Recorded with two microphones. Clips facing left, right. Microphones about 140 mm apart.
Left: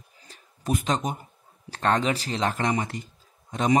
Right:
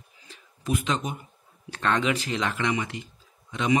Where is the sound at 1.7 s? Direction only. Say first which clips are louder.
Left 1 dB; 35° left (ahead or behind).